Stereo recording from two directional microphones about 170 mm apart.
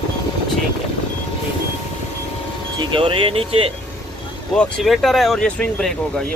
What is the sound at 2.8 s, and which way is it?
Speech, 30° right (ahead or behind).